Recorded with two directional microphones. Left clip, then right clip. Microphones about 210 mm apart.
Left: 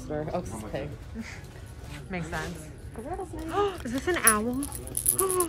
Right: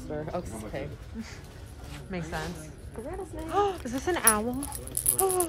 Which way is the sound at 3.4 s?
15° right (ahead or behind).